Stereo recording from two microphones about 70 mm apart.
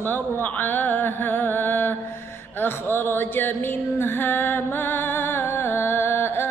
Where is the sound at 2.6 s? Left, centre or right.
Left.